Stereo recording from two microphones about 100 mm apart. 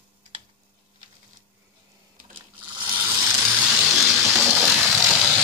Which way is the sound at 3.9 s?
5° right (ahead or behind).